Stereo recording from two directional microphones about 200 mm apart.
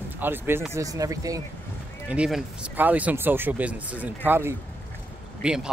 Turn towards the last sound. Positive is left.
turn(degrees=-5)  # may be behind; listen again after turning